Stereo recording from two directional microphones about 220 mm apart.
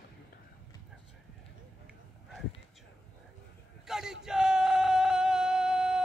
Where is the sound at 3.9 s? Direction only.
Centre (ahead or behind).